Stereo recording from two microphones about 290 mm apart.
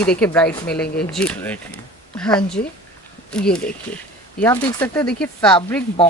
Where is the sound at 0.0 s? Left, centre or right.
Centre.